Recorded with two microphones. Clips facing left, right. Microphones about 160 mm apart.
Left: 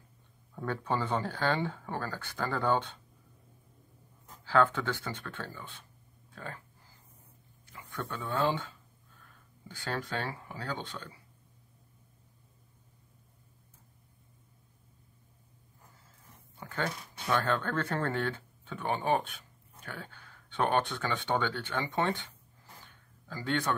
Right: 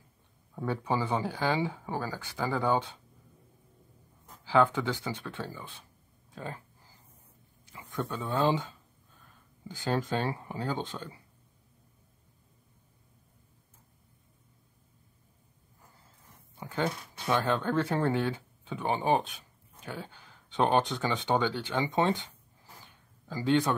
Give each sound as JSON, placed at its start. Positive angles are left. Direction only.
{"t": 0.6, "sound": "speech", "side_deg": -10}
{"t": 4.5, "sound": "speech", "side_deg": -15}
{"t": 8.4, "sound": "speech", "side_deg": -20}
{"t": 16.5, "sound": "speech", "side_deg": -15}
{"t": 23.2, "sound": "speech", "side_deg": -20}